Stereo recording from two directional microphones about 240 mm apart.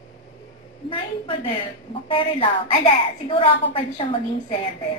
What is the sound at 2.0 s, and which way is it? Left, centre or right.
A woman's voice, left.